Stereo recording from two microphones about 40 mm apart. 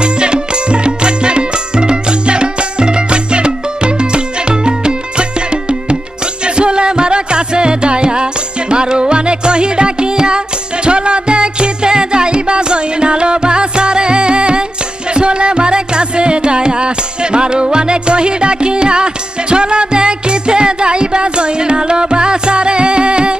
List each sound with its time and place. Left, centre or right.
0.0 s music: right